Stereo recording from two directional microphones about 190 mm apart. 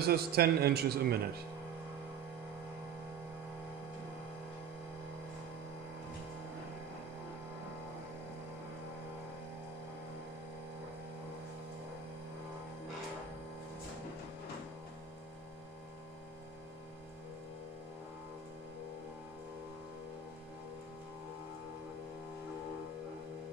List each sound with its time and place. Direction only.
0.0 s a man's voice: 55° right (ahead or behind)